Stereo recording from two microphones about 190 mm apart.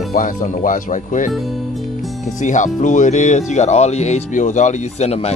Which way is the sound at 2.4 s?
40° left (ahead or behind).